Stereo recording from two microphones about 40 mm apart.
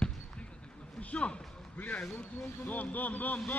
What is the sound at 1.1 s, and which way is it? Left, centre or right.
Speech, left.